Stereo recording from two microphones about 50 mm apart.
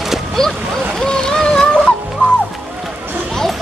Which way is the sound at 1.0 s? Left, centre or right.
Centre.